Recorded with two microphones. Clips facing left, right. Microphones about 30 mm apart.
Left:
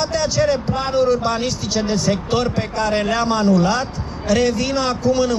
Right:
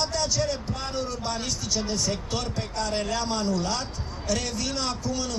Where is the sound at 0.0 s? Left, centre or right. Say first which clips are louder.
Left 8 dB; left.